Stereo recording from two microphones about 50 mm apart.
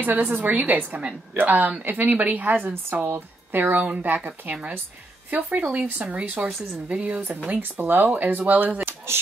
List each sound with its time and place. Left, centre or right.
0.0 s speech: right
3.8 s speech: right